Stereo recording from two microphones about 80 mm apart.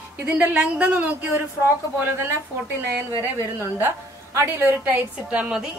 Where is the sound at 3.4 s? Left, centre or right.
Right.